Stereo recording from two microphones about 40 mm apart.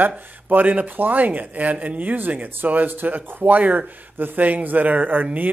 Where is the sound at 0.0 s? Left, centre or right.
Right.